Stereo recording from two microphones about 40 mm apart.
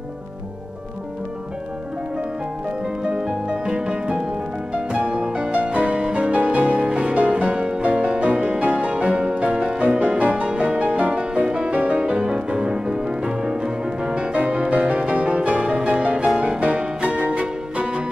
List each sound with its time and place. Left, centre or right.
3.2 s music: right
5.2 s music: right
5.5 s music: right
6.8 s music: right
7.2 s music: right
9.8 s music: right
10.5 s music: right
10.9 s music: right
11.1 s music: right
11.7 s music: right; by 14.1 s centre
14.1 s music: right
17.3 s music: right